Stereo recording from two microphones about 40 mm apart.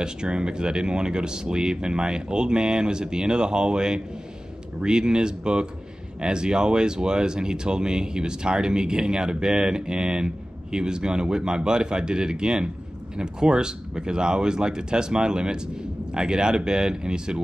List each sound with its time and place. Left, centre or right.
0.0 s speech: right